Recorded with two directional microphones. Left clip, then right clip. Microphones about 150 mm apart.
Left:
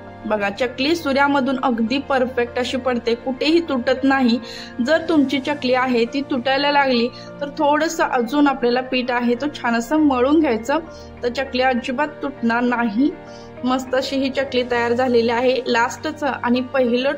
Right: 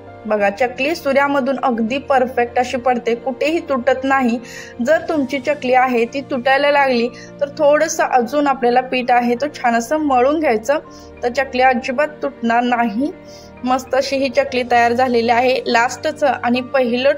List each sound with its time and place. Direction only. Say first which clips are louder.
0.3 s a woman's voice: right 5 dB; 20° right (ahead or behind)
15.4 s a woman's voice: right 2 dB; 45° left (ahead or behind)
15.7 s a woman's voice: right 3 dB; 15° right (ahead or behind)
16.5 s a woman's voice: right 2 dB; 45° left (ahead or behind)